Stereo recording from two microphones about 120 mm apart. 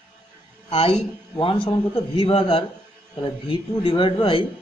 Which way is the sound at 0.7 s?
55° left (ahead or behind).